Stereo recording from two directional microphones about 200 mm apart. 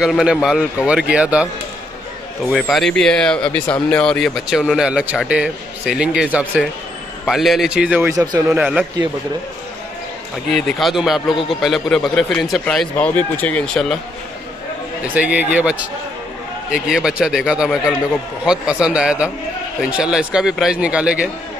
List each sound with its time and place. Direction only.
0.0 s a man's voice: 5° right (ahead or behind)
2.6 s a man's voice: 5° left (ahead or behind); by 8.5 s 15° right (ahead or behind)
8.5 s a man's voice: 5° right (ahead or behind)
10.5 s a man's voice: centre (ahead or behind)
15.1 s a man's voice: 5° right (ahead or behind)